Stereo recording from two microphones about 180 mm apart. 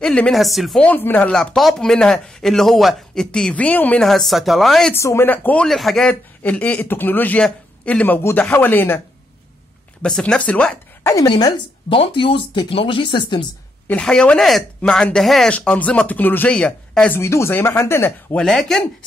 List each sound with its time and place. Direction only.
0.0 s speech: 5° left (ahead or behind)
4.9 s speech: 15° left (ahead or behind)
10.0 s speech: 5° left (ahead or behind)
11.1 s speech: 20° left (ahead or behind)
13.8 s speech: 5° left (ahead or behind)